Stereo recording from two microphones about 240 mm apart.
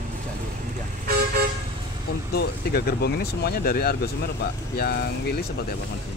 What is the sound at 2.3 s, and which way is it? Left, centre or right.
Speech, left.